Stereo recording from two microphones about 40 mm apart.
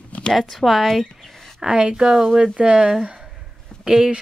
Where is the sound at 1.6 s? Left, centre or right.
Right.